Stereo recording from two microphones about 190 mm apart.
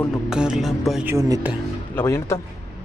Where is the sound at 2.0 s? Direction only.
15° left (ahead or behind).